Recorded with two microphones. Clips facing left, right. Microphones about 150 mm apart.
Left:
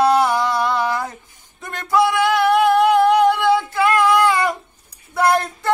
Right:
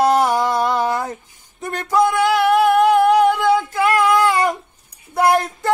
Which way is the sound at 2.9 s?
50° right (ahead or behind).